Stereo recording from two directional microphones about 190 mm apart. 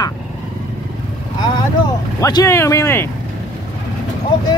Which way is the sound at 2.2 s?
15° left (ahead or behind).